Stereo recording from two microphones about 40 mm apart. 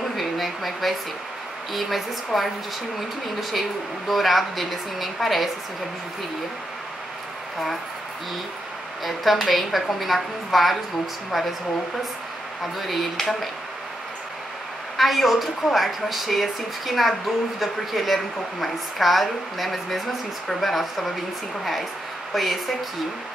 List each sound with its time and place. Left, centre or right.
0.2 s a sound: centre
1.7 s a woman's voice: centre
4.1 s a woman's voice: centre
9.0 s a woman's voice: centre
12.7 s a woman's voice: centre
15.0 s a woman's voice: centre
22.3 s speech: centre